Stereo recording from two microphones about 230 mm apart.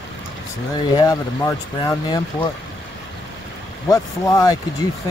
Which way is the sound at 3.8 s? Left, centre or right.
Centre.